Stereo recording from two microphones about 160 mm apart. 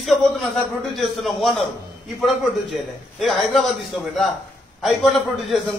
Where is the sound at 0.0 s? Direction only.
Centre (ahead or behind).